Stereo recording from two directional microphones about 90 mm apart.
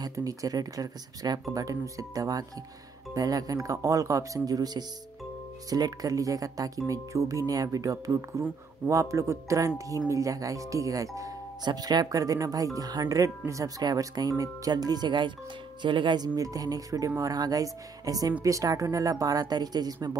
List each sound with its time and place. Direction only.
0.0 s speech: 40° right (ahead or behind); by 16.3 s 60° right (ahead or behind)
16.3 s speech: 40° right (ahead or behind)